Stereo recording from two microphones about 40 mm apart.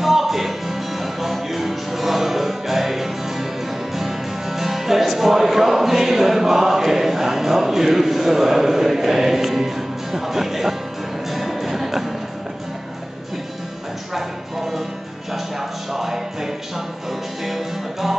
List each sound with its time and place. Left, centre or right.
0.0 s music: centre
14.1 s a sound: centre
15.9 s music: centre